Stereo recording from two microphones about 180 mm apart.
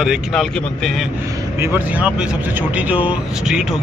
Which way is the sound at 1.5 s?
15° right (ahead or behind).